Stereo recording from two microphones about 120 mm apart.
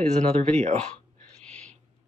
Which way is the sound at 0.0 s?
65° right (ahead or behind).